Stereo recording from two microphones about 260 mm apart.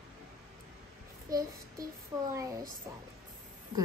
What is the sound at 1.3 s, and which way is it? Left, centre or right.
Child singing, centre.